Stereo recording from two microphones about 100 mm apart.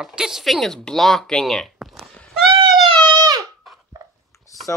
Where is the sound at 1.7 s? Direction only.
Centre (ahead or behind).